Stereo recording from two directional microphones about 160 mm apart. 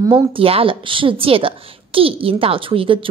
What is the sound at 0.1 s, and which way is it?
A woman's voice, 35° right (ahead or behind).